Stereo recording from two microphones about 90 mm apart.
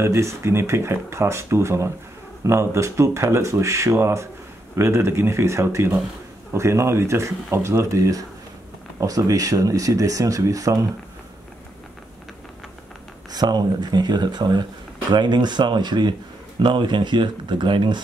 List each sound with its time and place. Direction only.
0.0 s speech: 30° right (ahead or behind)
13.3 s speech: 50° right (ahead or behind)